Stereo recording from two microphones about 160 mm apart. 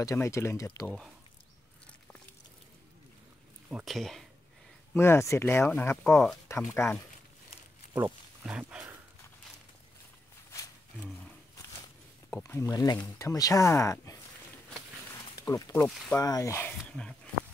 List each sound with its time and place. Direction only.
0.0 s speech: 20° left (ahead or behind)
0.8 s speech: centre (ahead or behind)
3.7 s speech: centre (ahead or behind)
4.9 s speech: 15° left (ahead or behind)
6.5 s speech: 15° left (ahead or behind)
8.0 s speech: 5° right (ahead or behind)
12.3 s speech: 15° left (ahead or behind)
15.1 s a sound: 20° left (ahead or behind)
15.7 s speech: 10° left (ahead or behind)
16.2 s speech: 20° left (ahead or behind)
16.7 s a sound: 5° left (ahead or behind)